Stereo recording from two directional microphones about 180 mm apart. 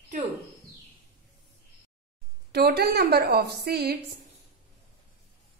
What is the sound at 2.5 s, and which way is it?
A woman's voice, 60° right (ahead or behind).